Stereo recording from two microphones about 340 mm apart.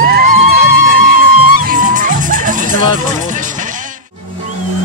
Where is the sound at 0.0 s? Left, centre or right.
Right.